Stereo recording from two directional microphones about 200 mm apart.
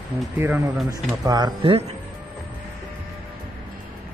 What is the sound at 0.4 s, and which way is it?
Speech, 10° right (ahead or behind).